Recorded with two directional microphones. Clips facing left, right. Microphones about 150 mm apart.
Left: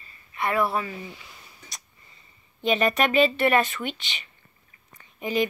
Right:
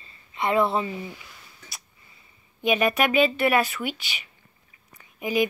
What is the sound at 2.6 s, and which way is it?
Speech, centre (ahead or behind).